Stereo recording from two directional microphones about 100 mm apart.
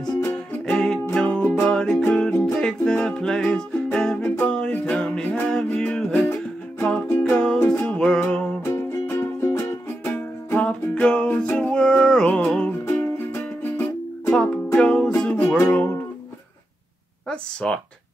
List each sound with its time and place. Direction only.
0.2 s music: 20° left (ahead or behind)
0.7 s music: 5° left (ahead or behind)
1.7 s music: 5° left (ahead or behind)
14.3 s music: 5° left (ahead or behind)
15.3 s music: 25° left (ahead or behind)
17.3 s a sound: 10° left (ahead or behind)